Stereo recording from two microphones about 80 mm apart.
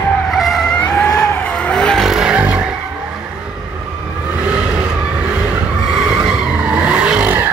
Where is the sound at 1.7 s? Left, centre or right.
Centre.